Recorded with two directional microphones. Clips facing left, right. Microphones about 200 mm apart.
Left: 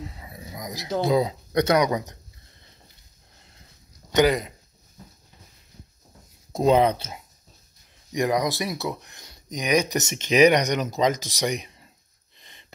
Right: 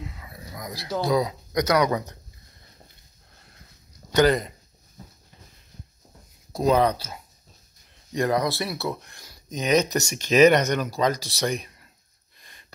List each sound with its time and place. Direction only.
0.0 s a sound: 30° left (ahead or behind)
0.3 s speech: 20° left (ahead or behind)
1.8 s speech: 15° left (ahead or behind)
4.1 s speech: 10° left (ahead or behind)
6.5 s speech: 25° left (ahead or behind)
12.4 s a sound: 20° left (ahead or behind)